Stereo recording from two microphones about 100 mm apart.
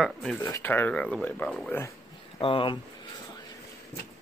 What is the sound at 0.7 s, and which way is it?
Speech, 15° left (ahead or behind).